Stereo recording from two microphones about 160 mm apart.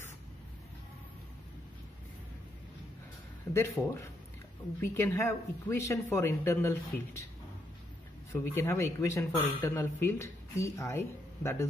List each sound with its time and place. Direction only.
3.5 s speech: 15° left (ahead or behind)
8.3 s speech: 20° left (ahead or behind)